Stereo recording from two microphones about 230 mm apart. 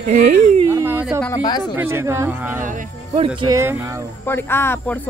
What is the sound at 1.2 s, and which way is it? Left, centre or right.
Speech, centre.